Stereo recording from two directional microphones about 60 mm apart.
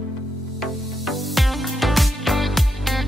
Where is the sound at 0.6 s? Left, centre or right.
Centre.